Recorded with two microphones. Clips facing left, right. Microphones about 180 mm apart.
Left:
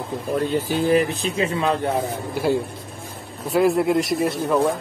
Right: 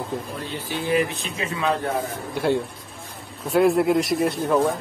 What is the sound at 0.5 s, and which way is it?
Speech, 45° left (ahead or behind).